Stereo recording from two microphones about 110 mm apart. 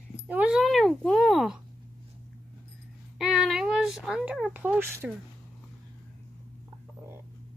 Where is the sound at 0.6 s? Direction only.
Centre (ahead or behind).